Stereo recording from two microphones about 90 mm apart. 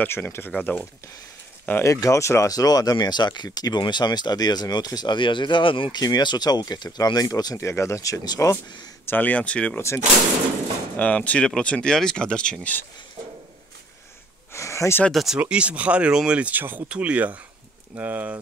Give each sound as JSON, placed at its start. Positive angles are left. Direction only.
{"t": 0.0, "sound": "speech", "side_deg": 25}
{"t": 0.5, "sound": "speech", "side_deg": 15}
{"t": 1.8, "sound": "speech", "side_deg": 35}
{"t": 5.9, "sound": "speech", "side_deg": 50}
{"t": 9.0, "sound": "speech", "side_deg": 20}
{"t": 9.8, "sound": "speech", "side_deg": 30}
{"t": 11.0, "sound": "speech", "side_deg": 15}
{"t": 14.5, "sound": "a sound", "side_deg": 35}
{"t": 15.0, "sound": "speech", "side_deg": 0}
{"t": 15.4, "sound": "speech", "side_deg": -15}